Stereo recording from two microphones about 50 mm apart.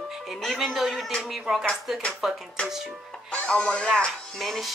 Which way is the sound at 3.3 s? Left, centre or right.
Left.